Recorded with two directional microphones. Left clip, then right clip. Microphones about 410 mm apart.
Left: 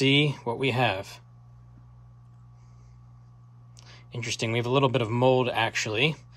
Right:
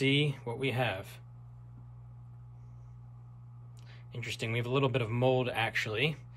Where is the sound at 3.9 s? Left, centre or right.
Centre.